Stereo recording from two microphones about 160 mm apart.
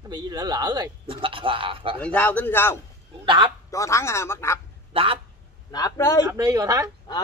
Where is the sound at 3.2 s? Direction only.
25° right (ahead or behind).